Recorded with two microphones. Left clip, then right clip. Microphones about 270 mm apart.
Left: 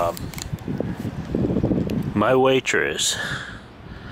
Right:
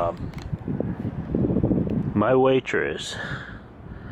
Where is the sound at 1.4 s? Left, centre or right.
Right.